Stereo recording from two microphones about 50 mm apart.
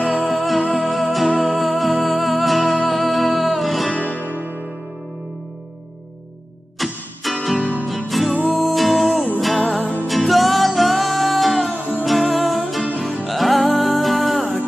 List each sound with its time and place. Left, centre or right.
0.3 s music: centre
4.2 s music: right
6.8 s music: centre
7.2 s guitar: centre
7.6 s music: right
8.2 s music: centre